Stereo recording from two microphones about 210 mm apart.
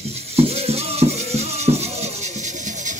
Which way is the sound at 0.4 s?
30° right (ahead or behind).